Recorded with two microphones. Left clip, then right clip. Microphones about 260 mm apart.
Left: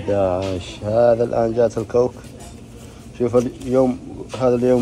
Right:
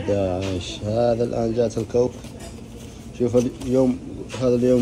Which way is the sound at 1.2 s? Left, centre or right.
Left.